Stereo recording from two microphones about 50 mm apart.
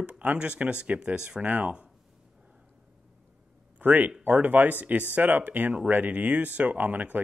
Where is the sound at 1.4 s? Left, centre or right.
Right.